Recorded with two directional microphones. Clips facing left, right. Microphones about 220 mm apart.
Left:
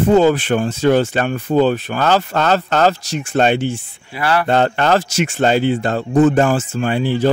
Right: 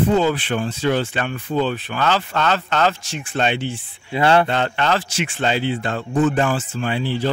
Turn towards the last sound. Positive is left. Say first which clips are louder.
# left 6 dB
turn(degrees=45)  # may be behind; listen again after turning